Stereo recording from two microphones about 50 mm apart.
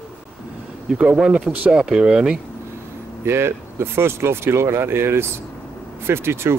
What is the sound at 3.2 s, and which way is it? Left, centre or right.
Speech, right.